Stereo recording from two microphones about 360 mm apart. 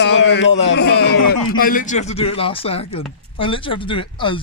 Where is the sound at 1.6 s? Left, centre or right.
Left.